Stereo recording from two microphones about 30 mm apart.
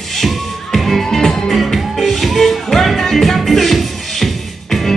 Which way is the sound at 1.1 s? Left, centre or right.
Centre.